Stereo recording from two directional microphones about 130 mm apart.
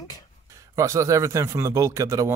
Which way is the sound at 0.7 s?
25° right (ahead or behind).